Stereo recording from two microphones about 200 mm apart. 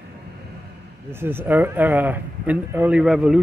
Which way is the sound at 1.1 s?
10° right (ahead or behind).